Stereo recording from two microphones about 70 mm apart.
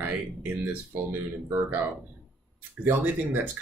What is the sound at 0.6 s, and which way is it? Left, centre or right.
Speech, right.